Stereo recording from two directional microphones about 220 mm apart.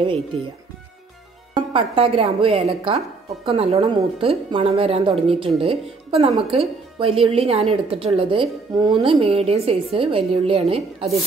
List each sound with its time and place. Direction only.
1.5 s a woman's voice: 25° right (ahead or behind)